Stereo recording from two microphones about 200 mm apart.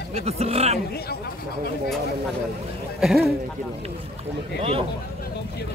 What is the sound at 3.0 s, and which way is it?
Speech, centre (ahead or behind).